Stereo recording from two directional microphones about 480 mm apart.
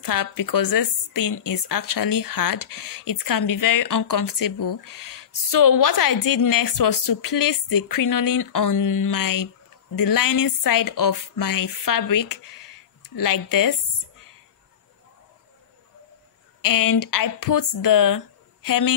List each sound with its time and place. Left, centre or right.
0.0 s speech: left
16.6 s speech: left